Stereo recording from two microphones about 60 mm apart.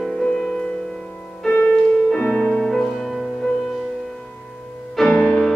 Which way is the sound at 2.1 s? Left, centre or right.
Centre.